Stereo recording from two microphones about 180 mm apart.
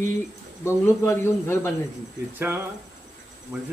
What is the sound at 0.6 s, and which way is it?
Speech, 15° left (ahead or behind).